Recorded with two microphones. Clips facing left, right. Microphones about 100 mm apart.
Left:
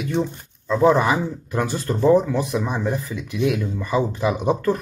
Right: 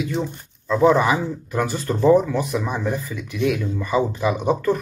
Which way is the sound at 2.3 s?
20° left (ahead or behind).